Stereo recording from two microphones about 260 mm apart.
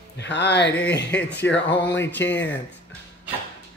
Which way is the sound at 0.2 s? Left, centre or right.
Left.